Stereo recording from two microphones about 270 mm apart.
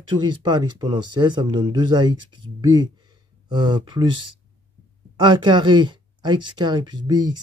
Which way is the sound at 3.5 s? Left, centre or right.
Centre.